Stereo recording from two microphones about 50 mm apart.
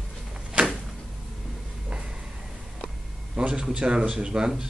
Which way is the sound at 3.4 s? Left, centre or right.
Right.